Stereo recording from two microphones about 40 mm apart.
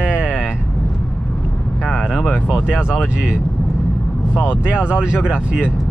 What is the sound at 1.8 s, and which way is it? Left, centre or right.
Vehicle, centre.